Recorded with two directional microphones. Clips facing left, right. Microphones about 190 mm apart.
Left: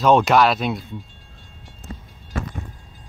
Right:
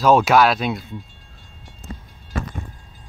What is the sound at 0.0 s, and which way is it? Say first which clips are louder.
Speech: right 1 dB; 5° right (ahead or behind).